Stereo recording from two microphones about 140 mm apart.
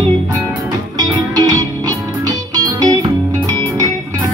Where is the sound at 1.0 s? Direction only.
25° right (ahead or behind).